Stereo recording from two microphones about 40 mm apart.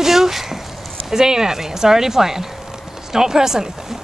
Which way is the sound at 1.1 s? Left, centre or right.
Centre.